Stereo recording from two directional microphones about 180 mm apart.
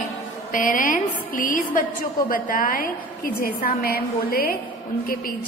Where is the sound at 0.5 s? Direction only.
50° left (ahead or behind).